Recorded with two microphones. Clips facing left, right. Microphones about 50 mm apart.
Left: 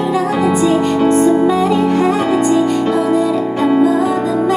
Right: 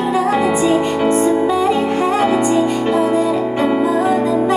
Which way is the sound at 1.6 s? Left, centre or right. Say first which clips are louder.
Left 3 dB; right.